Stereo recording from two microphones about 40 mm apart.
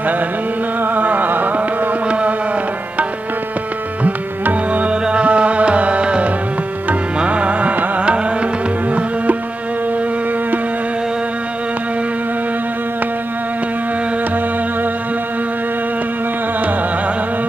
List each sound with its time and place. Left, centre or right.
0.7 s music: right
2.0 s music: right
4.0 s music: right
5.0 s music: right
8.0 s music: right